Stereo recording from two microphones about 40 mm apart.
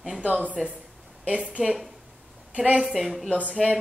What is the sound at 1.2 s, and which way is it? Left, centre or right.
A woman's voice, right.